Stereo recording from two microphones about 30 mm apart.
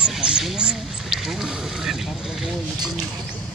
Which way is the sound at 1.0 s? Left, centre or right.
Centre.